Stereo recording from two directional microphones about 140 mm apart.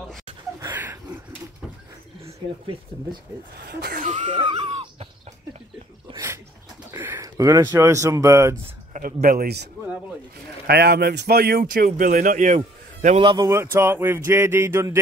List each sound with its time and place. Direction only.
2.6 s speech: 30° right (ahead or behind)
3.6 s speech: 70° right (ahead or behind)
4.3 s speech: 35° right (ahead or behind)
6.1 s a sound: 20° right (ahead or behind)
6.9 s speech: 20° right (ahead or behind)
8.9 s speech: 90° right
11.0 s speech: 90° right; by 13.2 s 65° right (ahead or behind)
13.2 s speech: 35° right (ahead or behind)
13.7 s speech: 15° right (ahead or behind)